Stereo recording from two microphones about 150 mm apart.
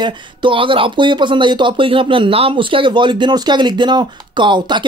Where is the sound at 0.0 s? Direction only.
35° right (ahead or behind).